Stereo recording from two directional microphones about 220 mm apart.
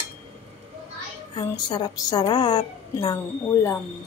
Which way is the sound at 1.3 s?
20° left (ahead or behind).